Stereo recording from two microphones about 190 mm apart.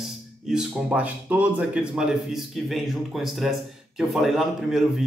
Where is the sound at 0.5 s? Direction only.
5° right (ahead or behind).